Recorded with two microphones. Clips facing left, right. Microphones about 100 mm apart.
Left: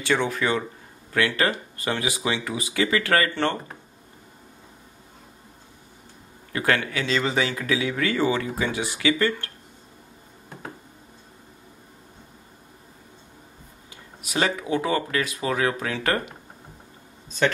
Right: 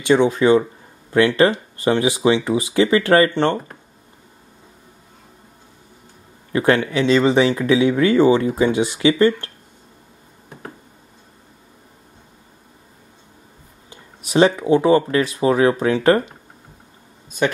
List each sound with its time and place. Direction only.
0.0 s speech: 20° right (ahead or behind)
6.5 s speech: 25° right (ahead or behind)
13.8 s speech: 30° right (ahead or behind)
17.4 s speech: 15° right (ahead or behind)